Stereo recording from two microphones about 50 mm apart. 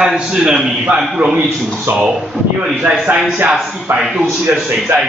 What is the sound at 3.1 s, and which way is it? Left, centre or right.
Speech, right.